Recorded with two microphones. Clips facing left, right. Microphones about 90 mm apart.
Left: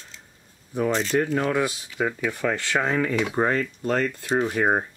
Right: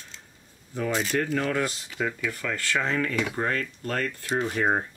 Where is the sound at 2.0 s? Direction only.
35° left (ahead or behind).